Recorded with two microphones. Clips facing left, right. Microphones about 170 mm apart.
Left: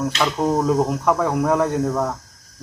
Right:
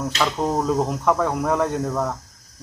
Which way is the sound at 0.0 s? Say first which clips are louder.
Left 2 dB; 10° left (ahead or behind).